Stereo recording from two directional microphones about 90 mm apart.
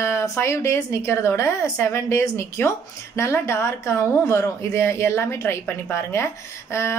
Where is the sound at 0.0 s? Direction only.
30° left (ahead or behind).